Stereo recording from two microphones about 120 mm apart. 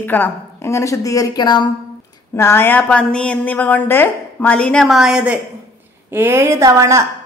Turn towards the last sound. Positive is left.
turn(degrees=-25)  # may be behind; listen again after turning